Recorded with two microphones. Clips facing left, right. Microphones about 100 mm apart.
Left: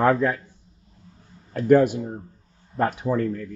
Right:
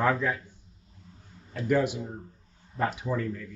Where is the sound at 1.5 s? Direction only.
50° left (ahead or behind).